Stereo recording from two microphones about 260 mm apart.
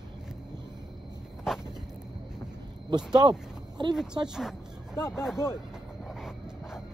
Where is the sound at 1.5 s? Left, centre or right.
Centre.